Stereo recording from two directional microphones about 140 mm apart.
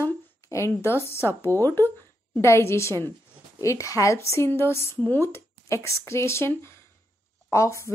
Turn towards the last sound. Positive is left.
turn(degrees=20)  # may be behind; listen again after turning